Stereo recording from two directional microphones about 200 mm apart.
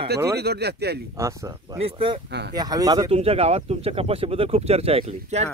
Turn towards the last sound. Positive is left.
turn(degrees=-30)  # may be behind; listen again after turning